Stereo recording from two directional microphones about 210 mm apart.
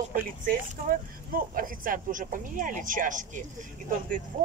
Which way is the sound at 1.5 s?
40° right (ahead or behind).